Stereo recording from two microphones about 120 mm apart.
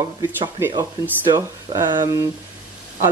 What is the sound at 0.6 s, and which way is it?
Speech, 20° right (ahead or behind).